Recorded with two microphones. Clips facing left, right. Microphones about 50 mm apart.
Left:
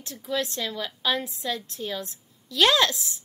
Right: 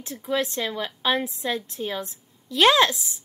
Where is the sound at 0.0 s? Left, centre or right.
Right.